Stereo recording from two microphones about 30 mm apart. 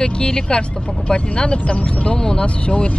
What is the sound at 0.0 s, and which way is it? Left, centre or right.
Speech, left.